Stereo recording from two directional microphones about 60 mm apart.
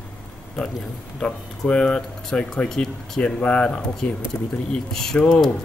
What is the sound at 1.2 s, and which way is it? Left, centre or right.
Speech, centre.